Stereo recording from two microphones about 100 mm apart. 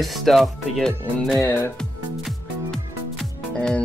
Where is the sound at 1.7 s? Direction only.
5° left (ahead or behind).